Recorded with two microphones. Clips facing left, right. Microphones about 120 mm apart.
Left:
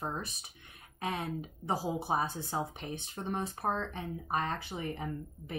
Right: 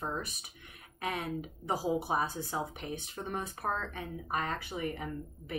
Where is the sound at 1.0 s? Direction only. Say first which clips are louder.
Even; 30° left (ahead or behind).